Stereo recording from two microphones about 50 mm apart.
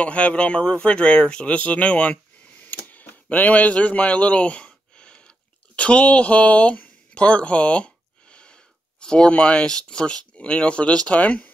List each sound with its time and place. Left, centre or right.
0.0 s speech: left
2.6 s a sound: left
5.8 s speech: left